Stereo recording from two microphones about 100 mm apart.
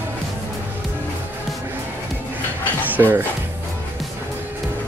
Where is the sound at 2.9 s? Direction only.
20° right (ahead or behind).